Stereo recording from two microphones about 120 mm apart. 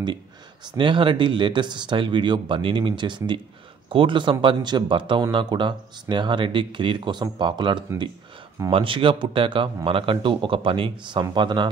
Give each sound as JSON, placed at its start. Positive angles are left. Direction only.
{"t": 0.7, "sound": "speech", "side_deg": -45}